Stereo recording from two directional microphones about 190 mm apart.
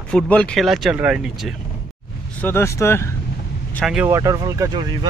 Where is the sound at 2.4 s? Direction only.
15° left (ahead or behind).